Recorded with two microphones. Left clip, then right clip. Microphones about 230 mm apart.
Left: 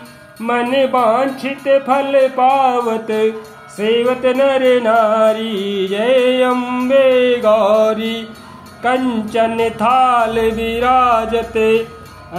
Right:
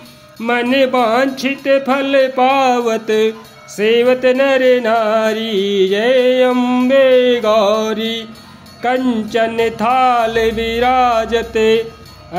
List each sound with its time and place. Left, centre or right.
0.4 s music: right